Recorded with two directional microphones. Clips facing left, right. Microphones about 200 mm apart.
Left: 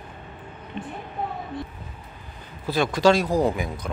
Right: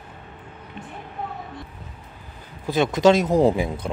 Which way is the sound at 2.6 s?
20° right (ahead or behind).